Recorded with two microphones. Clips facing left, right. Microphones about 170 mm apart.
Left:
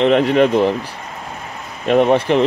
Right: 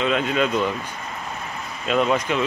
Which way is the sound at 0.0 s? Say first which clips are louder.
Left 9 dB; 65° left (ahead or behind).